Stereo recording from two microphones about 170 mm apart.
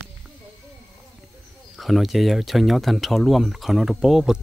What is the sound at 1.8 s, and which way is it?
Speech, centre (ahead or behind).